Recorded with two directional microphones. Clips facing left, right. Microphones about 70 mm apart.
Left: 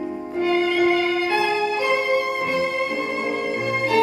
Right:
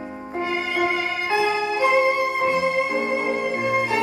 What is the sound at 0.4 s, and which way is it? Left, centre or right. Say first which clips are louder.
Music: left 4 dB; centre.